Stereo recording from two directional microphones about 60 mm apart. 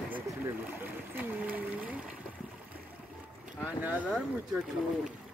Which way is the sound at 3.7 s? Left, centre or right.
Right.